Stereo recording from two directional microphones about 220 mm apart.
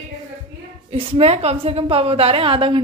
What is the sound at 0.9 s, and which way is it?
A woman's voice, 25° right (ahead or behind).